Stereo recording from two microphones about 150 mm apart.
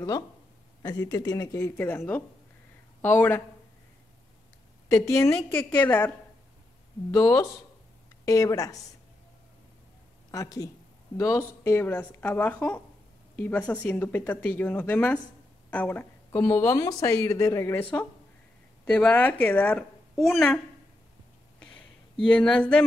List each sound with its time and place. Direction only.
0.8 s speech: 25° left (ahead or behind)
4.8 s speech: 20° left (ahead or behind)
10.3 s speech: 25° left (ahead or behind)
18.9 s speech: 10° left (ahead or behind)
21.5 s a sound: 5° left (ahead or behind)